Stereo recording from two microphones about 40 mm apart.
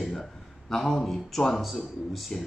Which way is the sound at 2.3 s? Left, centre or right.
Centre.